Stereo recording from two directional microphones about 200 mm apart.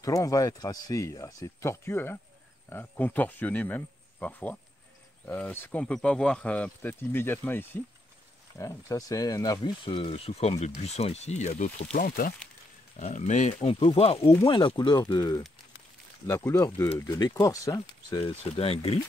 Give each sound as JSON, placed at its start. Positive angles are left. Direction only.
{"t": 0.0, "sound": "speech", "side_deg": 15}
{"t": 18.6, "sound": "speech", "side_deg": 30}